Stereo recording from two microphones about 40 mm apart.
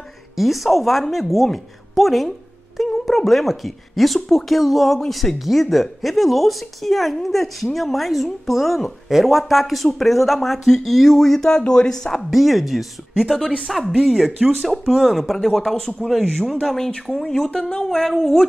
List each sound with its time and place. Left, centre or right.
0.4 s speech: centre
11.4 s speech: centre
12.3 s speech: centre